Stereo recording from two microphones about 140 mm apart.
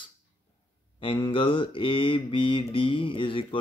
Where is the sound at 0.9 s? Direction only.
35° left (ahead or behind).